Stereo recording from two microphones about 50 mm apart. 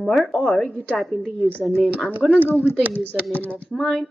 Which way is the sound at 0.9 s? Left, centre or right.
Centre.